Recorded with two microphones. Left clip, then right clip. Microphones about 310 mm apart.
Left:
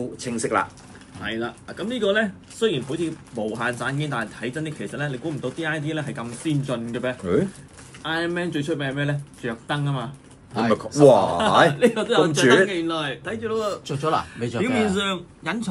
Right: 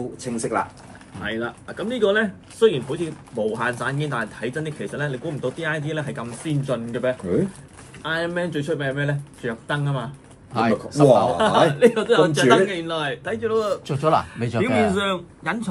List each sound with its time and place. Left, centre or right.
0.2 s speech: centre
13.8 s a man's voice: right
14.6 s speech: centre